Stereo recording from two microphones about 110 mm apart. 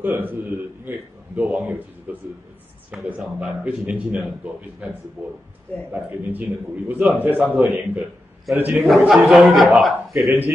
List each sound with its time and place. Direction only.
0.0 s speech: 20° right (ahead or behind)
8.8 s a man's voice: 5° right (ahead or behind)